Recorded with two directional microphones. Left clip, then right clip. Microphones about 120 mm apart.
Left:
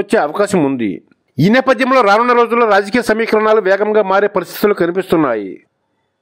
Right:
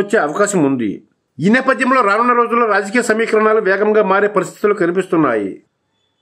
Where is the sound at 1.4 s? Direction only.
65° left (ahead or behind).